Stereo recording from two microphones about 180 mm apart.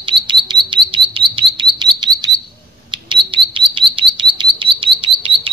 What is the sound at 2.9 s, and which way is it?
Chirp, 25° right (ahead or behind).